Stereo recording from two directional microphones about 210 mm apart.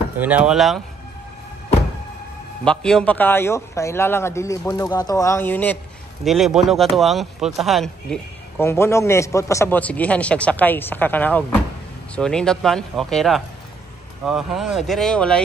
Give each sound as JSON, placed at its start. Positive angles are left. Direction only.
{"t": 0.2, "sound": "speech", "side_deg": -5}
{"t": 2.6, "sound": "speech", "side_deg": 5}